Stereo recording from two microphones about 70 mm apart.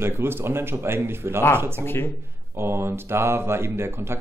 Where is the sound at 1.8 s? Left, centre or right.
Left.